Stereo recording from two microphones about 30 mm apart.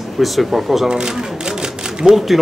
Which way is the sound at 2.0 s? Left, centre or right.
Centre.